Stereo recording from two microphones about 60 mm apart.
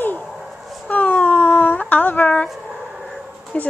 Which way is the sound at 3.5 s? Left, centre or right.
Centre.